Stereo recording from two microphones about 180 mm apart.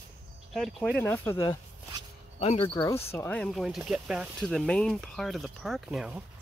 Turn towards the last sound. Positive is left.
turn(degrees=-5)  # may be behind; listen again after turning